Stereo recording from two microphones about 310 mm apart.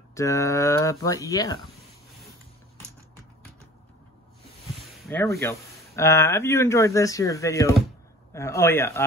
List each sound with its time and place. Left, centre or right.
0.1 s speech: centre
5.0 s speech: centre